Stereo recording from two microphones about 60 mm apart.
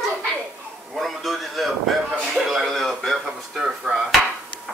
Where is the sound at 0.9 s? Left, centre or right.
Centre.